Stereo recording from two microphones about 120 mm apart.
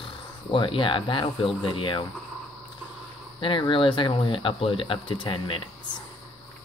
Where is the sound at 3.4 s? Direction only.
45° left (ahead or behind).